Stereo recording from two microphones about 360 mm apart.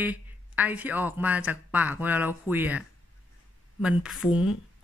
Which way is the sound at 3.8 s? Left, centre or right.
Centre.